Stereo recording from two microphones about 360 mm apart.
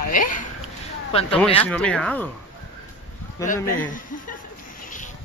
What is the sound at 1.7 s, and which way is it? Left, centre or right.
Speech, centre.